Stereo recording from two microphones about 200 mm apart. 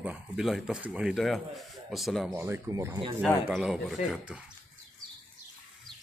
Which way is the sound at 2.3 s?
10° right (ahead or behind).